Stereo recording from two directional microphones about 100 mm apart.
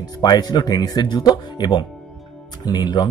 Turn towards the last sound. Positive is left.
turn(degrees=45)  # may be behind; listen again after turning